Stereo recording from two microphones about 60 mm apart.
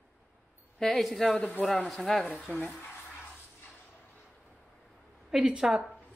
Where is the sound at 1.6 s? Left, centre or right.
Centre.